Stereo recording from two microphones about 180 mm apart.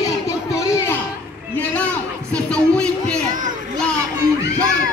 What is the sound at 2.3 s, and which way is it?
Music, 5° left (ahead or behind).